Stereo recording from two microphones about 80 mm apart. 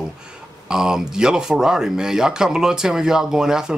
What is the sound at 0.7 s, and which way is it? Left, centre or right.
Speech, centre.